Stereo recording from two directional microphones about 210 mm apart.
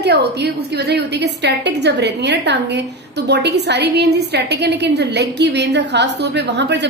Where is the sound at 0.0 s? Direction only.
50° right (ahead or behind).